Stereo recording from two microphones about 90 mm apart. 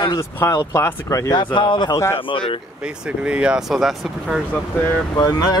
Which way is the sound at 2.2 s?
70° left (ahead or behind).